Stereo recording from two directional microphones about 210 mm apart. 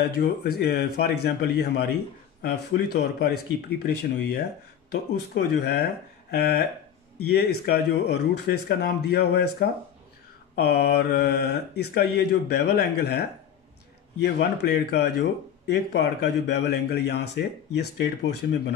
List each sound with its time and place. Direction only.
0.0 s speech: 45° left (ahead or behind)
14.2 s speech: 55° left (ahead or behind)